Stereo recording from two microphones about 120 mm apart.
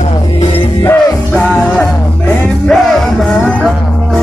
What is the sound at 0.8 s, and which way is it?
Music, 20° left (ahead or behind).